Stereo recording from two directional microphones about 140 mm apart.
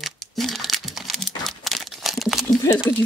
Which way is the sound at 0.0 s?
Centre (ahead or behind).